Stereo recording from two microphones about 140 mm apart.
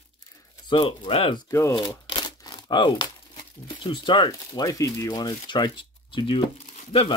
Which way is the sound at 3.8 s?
35° left (ahead or behind).